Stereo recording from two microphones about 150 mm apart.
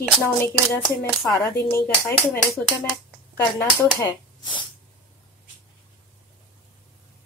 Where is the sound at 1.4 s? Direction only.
15° left (ahead or behind).